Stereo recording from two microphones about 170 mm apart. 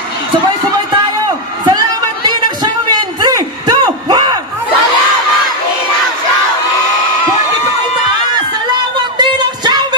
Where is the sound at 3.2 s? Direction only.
25° right (ahead or behind).